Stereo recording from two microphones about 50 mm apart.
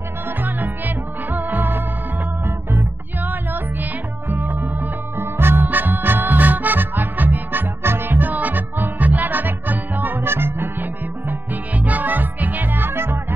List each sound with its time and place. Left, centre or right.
0.4 s music: right
3.2 s music: right
7.8 s music: right